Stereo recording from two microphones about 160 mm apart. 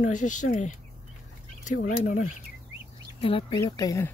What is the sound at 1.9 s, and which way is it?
Speech, 55° left (ahead or behind).